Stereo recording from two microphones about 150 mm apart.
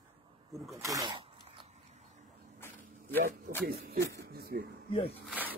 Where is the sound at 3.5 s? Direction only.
65° right (ahead or behind).